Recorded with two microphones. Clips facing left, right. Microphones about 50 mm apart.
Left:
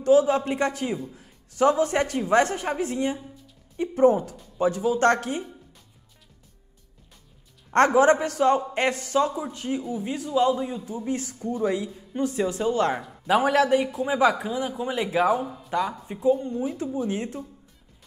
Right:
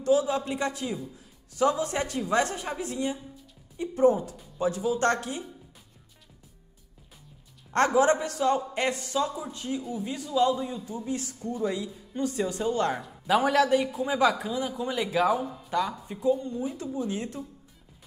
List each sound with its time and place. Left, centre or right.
0.0 s a woman's voice: left
7.7 s a man's voice: left; by 11.1 s centre
11.1 s a woman's voice: left
15.3 s speech: centre
15.7 s a man's voice: centre